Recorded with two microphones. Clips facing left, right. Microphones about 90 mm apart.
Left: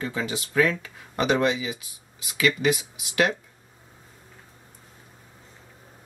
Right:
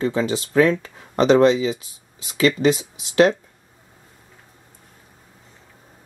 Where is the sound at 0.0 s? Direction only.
30° right (ahead or behind).